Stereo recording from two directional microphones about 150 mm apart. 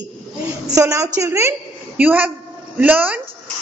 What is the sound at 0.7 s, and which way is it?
A woman's voice, 20° right (ahead or behind).